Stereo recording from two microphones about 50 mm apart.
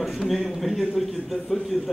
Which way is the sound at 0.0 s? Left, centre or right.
Centre.